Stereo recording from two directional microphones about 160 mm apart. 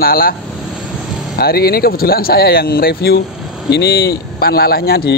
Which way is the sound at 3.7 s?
85° left.